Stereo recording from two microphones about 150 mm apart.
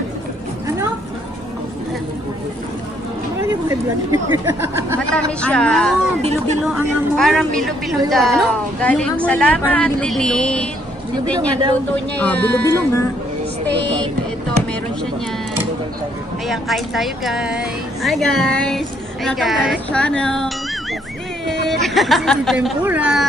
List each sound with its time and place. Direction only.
3.3 s speech: 20° right (ahead or behind)
5.1 s a woman's voice: 5° left (ahead or behind)
6.2 s speech: 45° right (ahead or behind)
7.2 s a woman's voice: centre (ahead or behind)
11.9 s speech: 10° left (ahead or behind)
16.4 s a woman's voice: centre (ahead or behind)